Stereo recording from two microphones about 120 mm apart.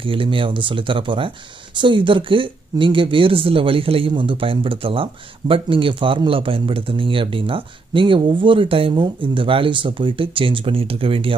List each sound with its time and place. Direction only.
0.0 s speech: 45° right (ahead or behind)